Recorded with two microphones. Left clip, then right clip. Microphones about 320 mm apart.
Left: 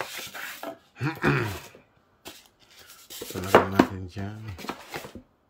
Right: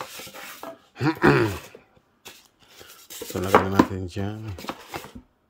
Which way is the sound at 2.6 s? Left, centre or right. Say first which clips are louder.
Right 5 dB; centre.